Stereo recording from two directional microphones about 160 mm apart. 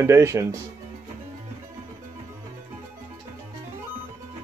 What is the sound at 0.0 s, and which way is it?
Speech, 15° right (ahead or behind).